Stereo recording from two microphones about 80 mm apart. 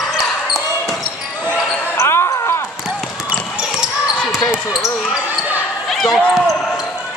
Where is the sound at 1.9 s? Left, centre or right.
Left.